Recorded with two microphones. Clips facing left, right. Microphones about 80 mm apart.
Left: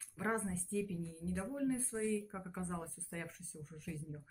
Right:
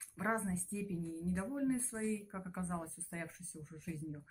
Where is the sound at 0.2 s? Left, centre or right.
Right.